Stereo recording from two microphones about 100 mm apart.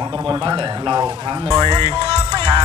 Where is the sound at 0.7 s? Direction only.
35° right (ahead or behind).